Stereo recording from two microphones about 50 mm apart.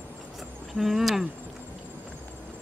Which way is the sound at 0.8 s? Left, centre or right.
Centre.